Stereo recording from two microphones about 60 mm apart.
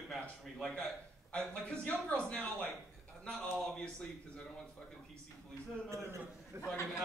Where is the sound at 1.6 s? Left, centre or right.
Centre.